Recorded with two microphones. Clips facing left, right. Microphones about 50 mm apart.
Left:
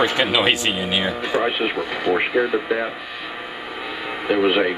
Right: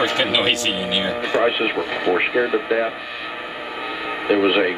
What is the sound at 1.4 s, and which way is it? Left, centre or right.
Speech, centre.